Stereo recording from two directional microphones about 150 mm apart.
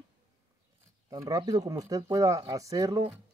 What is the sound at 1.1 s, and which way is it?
Speech, 25° right (ahead or behind).